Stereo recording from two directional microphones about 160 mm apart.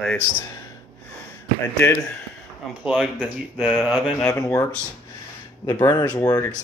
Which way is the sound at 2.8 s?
5° right (ahead or behind).